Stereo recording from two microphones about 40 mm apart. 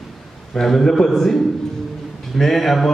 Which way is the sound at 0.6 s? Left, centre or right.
Centre.